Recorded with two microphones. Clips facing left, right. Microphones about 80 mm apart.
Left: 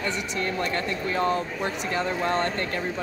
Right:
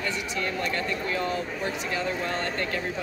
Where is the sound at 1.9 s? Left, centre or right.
Left.